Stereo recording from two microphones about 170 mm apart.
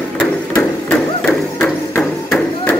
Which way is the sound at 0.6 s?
10° left (ahead or behind).